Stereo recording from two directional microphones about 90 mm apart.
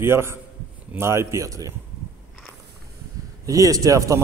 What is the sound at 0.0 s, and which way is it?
A man's voice, 30° right (ahead or behind).